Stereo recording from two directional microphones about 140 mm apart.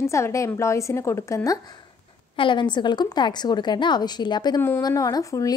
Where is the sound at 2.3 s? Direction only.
35° left (ahead or behind).